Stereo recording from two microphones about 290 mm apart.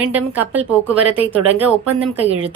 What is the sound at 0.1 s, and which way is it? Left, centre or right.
A woman's voice, centre.